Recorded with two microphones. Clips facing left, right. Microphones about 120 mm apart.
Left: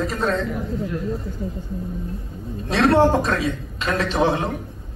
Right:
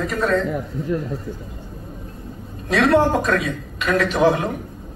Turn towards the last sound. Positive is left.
turn(degrees=25)  # may be behind; listen again after turning